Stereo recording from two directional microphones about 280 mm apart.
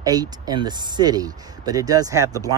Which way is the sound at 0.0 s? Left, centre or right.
Centre.